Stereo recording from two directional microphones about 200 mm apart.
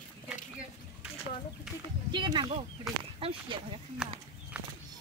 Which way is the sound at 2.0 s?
20° right (ahead or behind).